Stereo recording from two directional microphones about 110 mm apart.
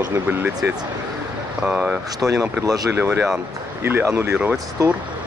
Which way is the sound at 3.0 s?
20° right (ahead or behind).